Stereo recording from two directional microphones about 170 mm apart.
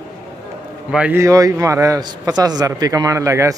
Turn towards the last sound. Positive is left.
turn(degrees=-15)  # may be behind; listen again after turning